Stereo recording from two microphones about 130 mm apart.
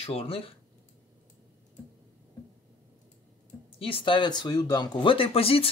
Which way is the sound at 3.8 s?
45° left (ahead or behind).